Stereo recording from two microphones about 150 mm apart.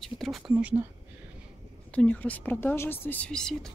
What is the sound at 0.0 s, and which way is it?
Speech, centre (ahead or behind).